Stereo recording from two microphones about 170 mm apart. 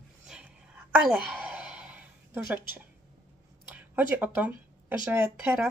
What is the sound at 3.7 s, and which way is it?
Speech, 10° right (ahead or behind).